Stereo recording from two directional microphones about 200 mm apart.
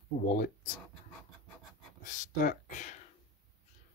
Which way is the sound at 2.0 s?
40° left (ahead or behind).